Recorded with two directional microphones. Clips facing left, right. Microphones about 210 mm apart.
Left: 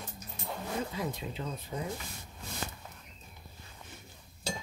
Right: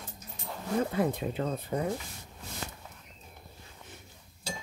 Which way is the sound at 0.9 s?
55° right (ahead or behind).